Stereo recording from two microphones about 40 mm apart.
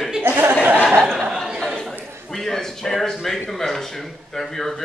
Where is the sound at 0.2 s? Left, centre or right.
Right.